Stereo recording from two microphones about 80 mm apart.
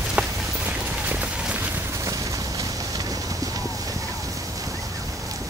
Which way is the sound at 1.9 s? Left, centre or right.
Right.